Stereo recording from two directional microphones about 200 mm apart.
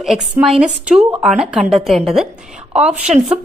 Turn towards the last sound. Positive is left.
turn(degrees=-5)  # may be behind; listen again after turning